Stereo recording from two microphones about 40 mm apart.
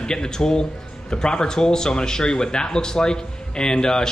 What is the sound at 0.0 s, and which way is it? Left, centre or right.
Speech, centre.